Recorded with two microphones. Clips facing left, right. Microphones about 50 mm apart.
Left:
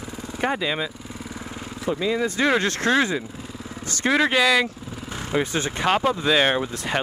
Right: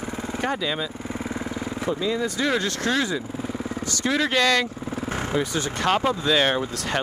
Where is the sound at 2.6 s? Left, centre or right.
Left.